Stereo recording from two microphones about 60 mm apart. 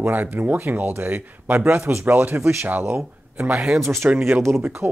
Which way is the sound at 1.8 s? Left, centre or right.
Right.